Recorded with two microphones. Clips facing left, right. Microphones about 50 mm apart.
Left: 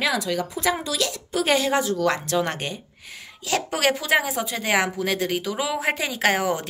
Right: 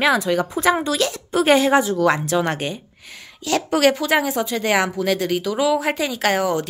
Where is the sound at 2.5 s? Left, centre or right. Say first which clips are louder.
Right 5 dB; centre.